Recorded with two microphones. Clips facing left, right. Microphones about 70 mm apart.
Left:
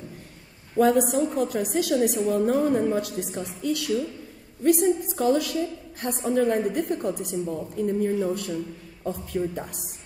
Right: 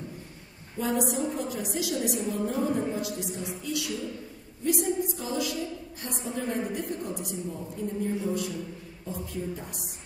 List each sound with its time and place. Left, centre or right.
0.7 s a woman's voice: left